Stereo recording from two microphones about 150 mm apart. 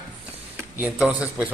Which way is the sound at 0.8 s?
5° right (ahead or behind).